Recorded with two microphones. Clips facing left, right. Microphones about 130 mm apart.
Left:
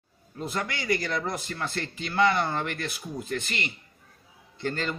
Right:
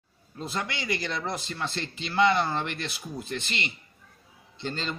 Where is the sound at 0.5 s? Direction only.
20° right (ahead or behind).